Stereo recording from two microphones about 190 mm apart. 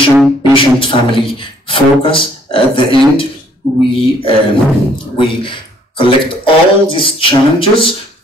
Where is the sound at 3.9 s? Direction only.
30° left (ahead or behind).